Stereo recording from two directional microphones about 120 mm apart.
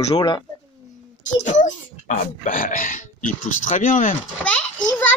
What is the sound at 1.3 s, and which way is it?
A child's voice, 90° left.